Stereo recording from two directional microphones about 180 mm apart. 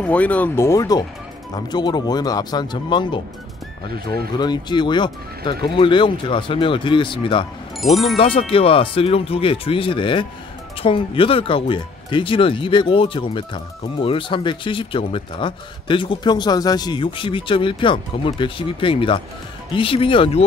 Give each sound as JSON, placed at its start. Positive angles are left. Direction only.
{"t": 0.0, "sound": "speech", "side_deg": 10}
{"t": 7.8, "sound": "speech", "side_deg": 0}
{"t": 8.2, "sound": "speech", "side_deg": 30}